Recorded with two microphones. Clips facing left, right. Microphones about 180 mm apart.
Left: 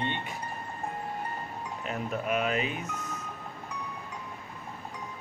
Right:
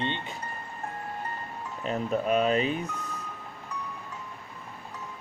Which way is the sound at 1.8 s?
35° right (ahead or behind).